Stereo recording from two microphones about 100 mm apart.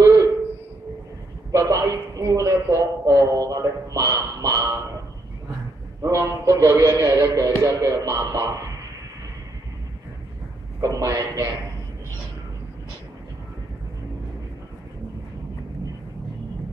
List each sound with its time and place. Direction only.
0.0 s a sound: 35° right (ahead or behind)
1.5 s a man's voice: 35° right (ahead or behind)
6.0 s a man's voice: 35° right (ahead or behind)
10.8 s a man's voice: 35° right (ahead or behind)